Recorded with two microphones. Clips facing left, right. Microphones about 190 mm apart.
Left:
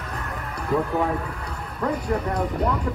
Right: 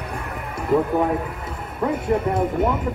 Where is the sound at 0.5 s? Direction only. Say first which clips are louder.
Right 4 dB; 15° right (ahead or behind).